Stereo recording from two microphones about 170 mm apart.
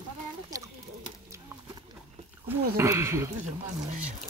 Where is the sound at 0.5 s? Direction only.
20° right (ahead or behind).